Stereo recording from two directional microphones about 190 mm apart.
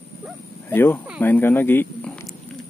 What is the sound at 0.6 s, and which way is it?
Speech, 10° left (ahead or behind).